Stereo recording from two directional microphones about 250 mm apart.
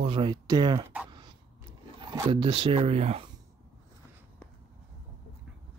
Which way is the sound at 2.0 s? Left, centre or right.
Centre.